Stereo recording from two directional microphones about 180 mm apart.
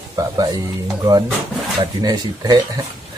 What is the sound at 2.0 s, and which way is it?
Speech, 20° right (ahead or behind).